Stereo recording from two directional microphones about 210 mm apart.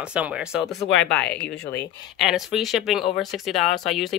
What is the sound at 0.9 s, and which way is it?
Speech, 55° left (ahead or behind).